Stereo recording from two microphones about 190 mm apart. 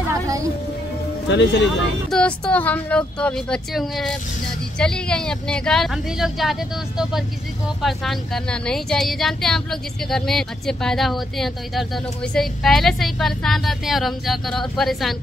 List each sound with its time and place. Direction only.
0.1 s music: 15° right (ahead or behind)
1.3 s speech: 65° left (ahead or behind)
2.0 s speech: 5° left (ahead or behind)